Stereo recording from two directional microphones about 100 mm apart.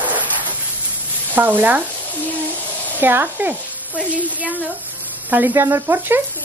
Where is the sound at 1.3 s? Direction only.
20° right (ahead or behind).